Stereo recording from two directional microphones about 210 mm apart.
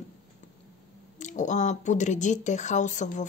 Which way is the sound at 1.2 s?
35° left (ahead or behind).